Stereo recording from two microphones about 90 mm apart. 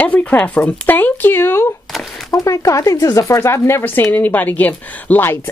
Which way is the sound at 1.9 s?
Centre (ahead or behind).